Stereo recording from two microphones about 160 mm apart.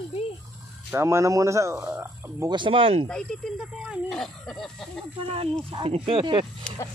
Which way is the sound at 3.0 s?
5° left (ahead or behind).